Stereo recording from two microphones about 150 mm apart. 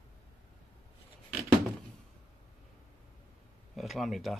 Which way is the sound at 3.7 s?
Centre (ahead or behind).